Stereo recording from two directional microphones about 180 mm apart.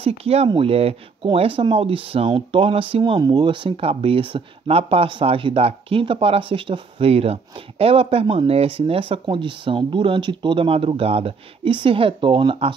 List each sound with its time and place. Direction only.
0.0 s speech: 35° right (ahead or behind)